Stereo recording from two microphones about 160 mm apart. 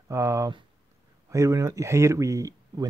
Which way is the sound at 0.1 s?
20° right (ahead or behind).